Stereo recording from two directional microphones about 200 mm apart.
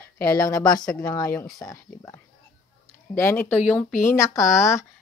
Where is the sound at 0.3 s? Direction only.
15° left (ahead or behind).